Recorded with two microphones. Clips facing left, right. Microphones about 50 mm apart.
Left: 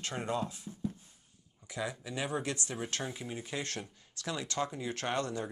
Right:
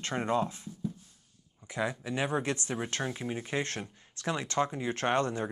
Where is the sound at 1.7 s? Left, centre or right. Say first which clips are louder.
Right 5 dB; right.